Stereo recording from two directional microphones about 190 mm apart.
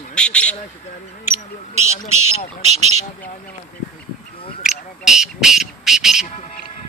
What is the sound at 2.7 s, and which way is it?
Speech, 35° right (ahead or behind).